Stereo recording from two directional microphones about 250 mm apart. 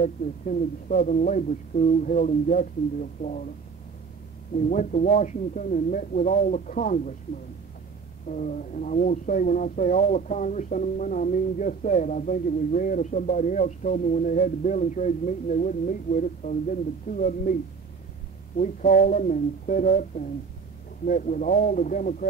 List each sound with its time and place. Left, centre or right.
0.0 s speech: left
4.6 s speech: left
8.3 s speech: left
18.6 s speech: left